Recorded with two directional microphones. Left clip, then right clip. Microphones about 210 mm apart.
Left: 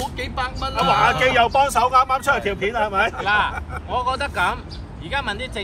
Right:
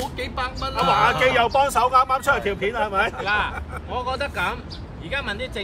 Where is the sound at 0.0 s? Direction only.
Centre (ahead or behind).